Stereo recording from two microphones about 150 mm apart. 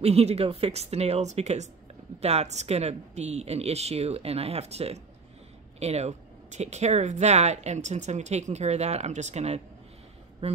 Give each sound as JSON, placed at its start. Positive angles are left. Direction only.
{"t": 0.0, "sound": "speech", "side_deg": -45}